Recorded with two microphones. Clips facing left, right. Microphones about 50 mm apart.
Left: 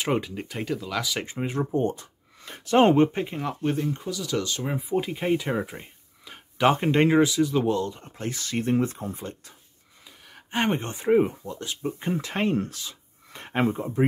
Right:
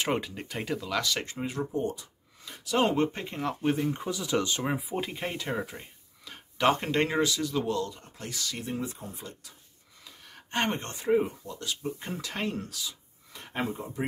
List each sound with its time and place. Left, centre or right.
0.0 s speech: centre
1.2 s speech: left
3.0 s speech: centre
3.3 s speech: centre
3.9 s speech: centre
4.7 s speech: centre; by 9.5 s left
10.0 s a sound: centre
11.0 s speech: left